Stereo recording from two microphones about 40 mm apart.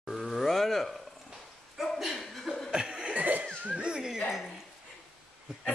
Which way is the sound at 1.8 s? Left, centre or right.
Centre.